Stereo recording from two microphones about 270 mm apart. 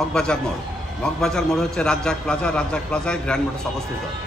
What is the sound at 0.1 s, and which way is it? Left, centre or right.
A man's voice, centre.